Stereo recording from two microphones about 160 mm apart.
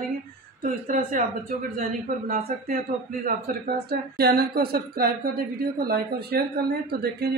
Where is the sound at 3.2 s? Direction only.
75° right (ahead or behind); by 7.3 s 90° right.